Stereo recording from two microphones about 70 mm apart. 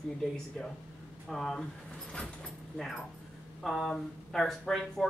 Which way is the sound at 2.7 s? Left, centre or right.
Centre.